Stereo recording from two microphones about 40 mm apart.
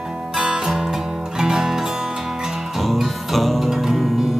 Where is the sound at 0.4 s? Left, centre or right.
Centre.